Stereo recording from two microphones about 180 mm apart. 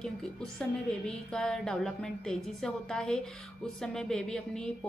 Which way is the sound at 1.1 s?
5° left (ahead or behind).